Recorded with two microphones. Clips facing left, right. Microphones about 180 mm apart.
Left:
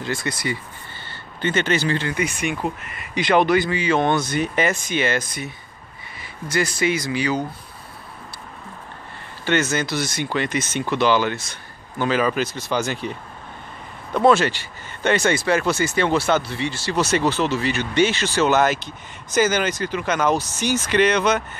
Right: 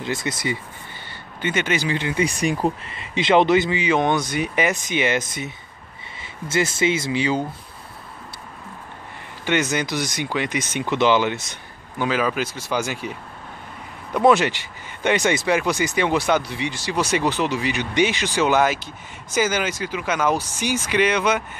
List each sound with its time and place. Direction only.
0.0 s speech: 20° right (ahead or behind)
1.0 s speech: 10° right (ahead or behind)
2.1 s speech: 35° right (ahead or behind)
9.4 s speech: 15° right (ahead or behind)
12.0 s speech: 5° right (ahead or behind)